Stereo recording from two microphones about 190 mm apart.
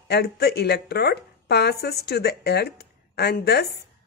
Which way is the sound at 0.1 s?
60° left (ahead or behind).